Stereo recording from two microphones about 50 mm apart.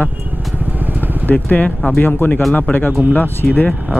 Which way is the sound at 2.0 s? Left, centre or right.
Left.